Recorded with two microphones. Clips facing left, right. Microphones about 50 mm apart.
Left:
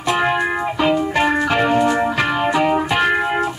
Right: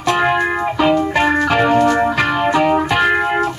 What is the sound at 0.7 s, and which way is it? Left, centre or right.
Music, right.